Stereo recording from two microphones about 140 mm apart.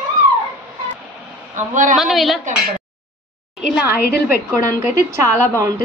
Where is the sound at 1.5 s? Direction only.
65° right (ahead or behind).